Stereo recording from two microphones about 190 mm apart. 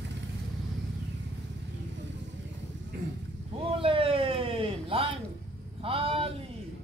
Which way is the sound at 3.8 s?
30° right (ahead or behind).